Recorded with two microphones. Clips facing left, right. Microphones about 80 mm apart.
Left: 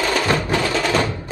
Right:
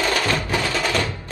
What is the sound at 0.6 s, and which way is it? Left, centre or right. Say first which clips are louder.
Music: left 3 dB; left.